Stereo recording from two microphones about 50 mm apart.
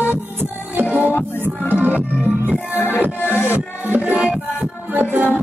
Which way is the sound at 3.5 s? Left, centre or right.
Right.